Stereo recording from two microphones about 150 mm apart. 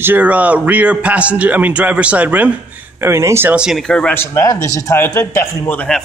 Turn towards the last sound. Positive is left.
turn(degrees=5)  # may be behind; listen again after turning